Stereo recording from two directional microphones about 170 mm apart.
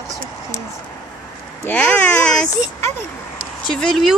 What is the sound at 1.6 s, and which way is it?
Speech, 10° left (ahead or behind).